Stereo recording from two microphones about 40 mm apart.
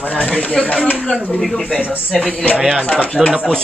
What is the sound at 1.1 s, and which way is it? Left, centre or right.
Speech, centre.